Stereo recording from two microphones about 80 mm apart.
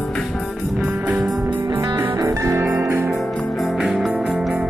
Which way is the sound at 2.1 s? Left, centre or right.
Right.